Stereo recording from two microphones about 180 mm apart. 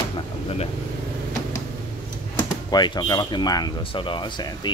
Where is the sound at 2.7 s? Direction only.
25° left (ahead or behind).